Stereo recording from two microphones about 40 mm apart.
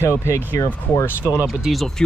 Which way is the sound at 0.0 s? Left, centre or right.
Left.